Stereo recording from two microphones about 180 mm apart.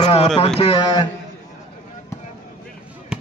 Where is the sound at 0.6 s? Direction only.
30° left (ahead or behind).